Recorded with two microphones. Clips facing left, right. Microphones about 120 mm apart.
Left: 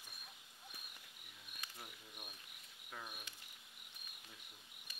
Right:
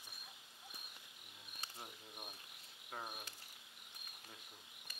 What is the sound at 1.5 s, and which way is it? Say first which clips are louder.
Insect: right 2 dB; 30° right (ahead or behind).